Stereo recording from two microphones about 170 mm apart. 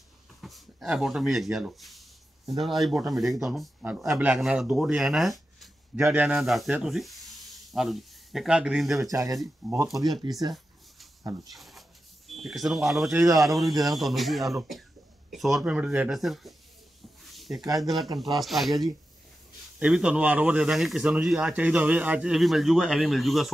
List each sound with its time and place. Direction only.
0.4 s a sound: centre (ahead or behind)
2.6 s speech: centre (ahead or behind)
9.1 s speech: 20° right (ahead or behind)
9.6 s speech: centre (ahead or behind)
10.2 s speech: 30° right (ahead or behind)
11.5 s speech: centre (ahead or behind)
13.1 s speech: 20° right (ahead or behind)
13.4 s speech: centre (ahead or behind)
17.3 s a sound: centre (ahead or behind)
17.6 s speech: 20° right (ahead or behind)
17.8 s speech: centre (ahead or behind)